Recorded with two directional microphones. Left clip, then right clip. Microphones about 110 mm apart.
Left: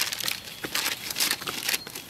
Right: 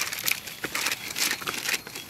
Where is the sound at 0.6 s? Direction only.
10° right (ahead or behind).